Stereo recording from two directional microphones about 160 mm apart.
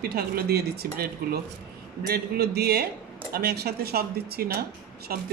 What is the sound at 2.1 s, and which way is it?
A man's voice, 80° right.